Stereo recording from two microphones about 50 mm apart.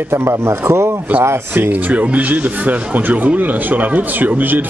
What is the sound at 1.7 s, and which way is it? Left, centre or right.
Speech, right.